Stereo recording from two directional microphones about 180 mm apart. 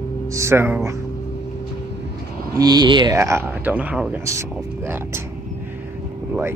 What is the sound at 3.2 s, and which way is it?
Speech, 15° right (ahead or behind).